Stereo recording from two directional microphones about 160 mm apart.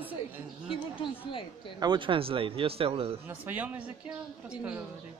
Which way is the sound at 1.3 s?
30° left (ahead or behind).